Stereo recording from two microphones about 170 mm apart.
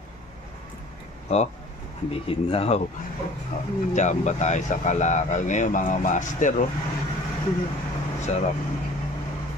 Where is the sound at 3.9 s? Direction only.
45° left (ahead or behind).